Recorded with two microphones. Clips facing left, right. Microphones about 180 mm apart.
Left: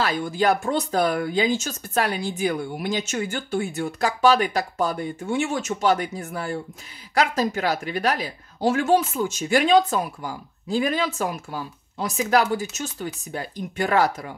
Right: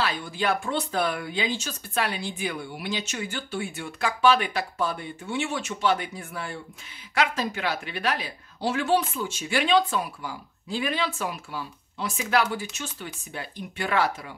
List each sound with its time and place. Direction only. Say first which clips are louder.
0.0 s speech: left 5 dB; 45° left (ahead or behind)